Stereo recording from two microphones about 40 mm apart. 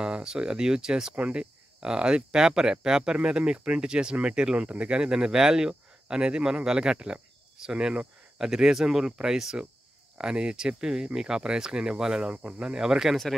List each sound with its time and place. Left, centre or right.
0.0 s speech: centre
12.4 s speech: right